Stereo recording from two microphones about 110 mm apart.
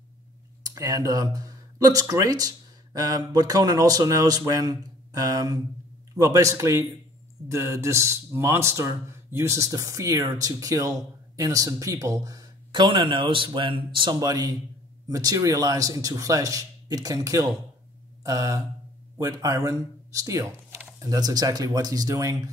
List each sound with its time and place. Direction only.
0.7 s speech: 35° right (ahead or behind)
12.8 s speech: 45° right (ahead or behind); by 17.5 s 30° right (ahead or behind)
18.2 s a sound: 30° right (ahead or behind)
19.1 s speech: 30° right (ahead or behind)